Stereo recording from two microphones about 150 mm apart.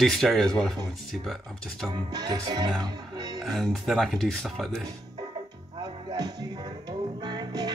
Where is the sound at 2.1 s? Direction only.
30° right (ahead or behind).